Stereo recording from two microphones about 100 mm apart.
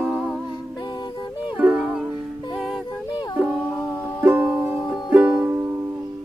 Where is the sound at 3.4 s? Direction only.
20° right (ahead or behind).